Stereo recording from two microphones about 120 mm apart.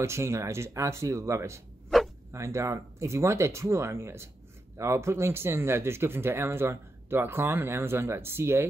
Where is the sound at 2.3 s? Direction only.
25° right (ahead or behind).